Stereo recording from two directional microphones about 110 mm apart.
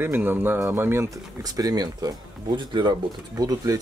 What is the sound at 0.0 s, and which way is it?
Speech, 20° right (ahead or behind).